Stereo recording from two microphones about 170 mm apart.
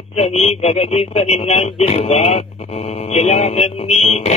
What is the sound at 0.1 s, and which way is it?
Speech, 40° left (ahead or behind).